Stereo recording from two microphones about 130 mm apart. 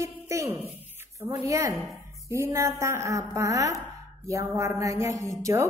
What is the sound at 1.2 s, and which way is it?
A woman's voice, 20° right (ahead or behind).